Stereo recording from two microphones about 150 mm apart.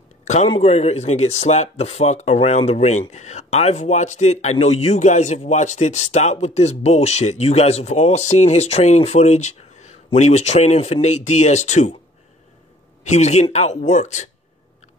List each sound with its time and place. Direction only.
0.2 s a sound: 50° left (ahead or behind)
0.5 s speech: 45° left (ahead or behind)
13.0 s speech: 50° left (ahead or behind)